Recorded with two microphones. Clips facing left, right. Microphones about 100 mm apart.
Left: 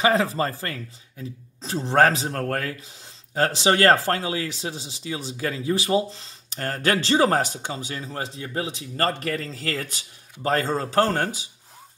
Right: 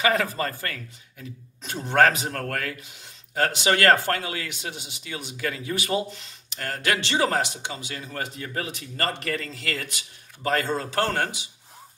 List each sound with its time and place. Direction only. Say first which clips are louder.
0.0 s speech: left 3 dB; 30° left (ahead or behind)